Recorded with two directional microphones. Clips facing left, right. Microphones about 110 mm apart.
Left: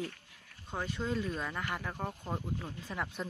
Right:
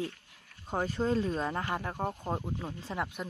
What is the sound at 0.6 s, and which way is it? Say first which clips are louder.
Speech: right 6 dB; 40° right (ahead or behind).